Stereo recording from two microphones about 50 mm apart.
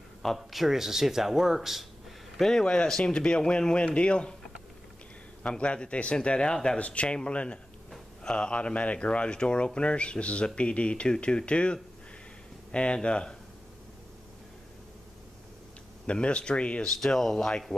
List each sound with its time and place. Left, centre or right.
0.5 s speech: centre
2.3 s speech: centre
5.4 s speech: left
16.1 s speech: left
16.8 s speech: centre